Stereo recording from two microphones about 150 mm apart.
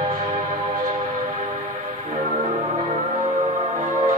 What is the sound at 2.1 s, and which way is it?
Music, 55° right (ahead or behind).